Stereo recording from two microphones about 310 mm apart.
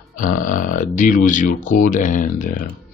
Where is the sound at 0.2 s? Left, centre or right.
Left.